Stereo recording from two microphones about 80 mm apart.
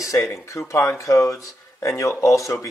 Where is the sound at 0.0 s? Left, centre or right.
Left.